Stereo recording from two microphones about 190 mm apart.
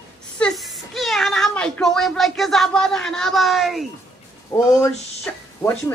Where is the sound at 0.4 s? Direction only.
Centre (ahead or behind).